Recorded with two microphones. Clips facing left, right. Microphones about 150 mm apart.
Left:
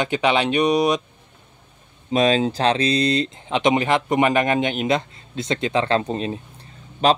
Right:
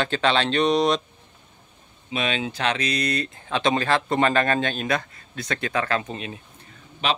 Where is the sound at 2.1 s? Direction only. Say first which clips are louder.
Left 9 dB; 35° left (ahead or behind).